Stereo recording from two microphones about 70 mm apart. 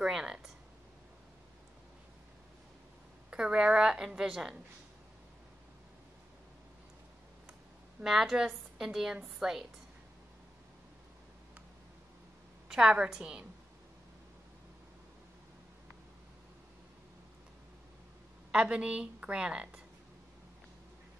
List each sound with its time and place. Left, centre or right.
0.0 s a sound: centre
3.3 s a woman's voice: centre
8.0 s a woman's voice: centre
12.6 s a woman's voice: centre
18.5 s a woman's voice: centre